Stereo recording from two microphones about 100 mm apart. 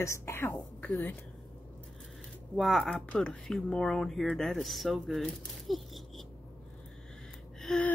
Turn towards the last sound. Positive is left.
turn(degrees=10)  # may be behind; listen again after turning